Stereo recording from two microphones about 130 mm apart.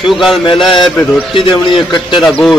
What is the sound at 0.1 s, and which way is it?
Speech, centre (ahead or behind).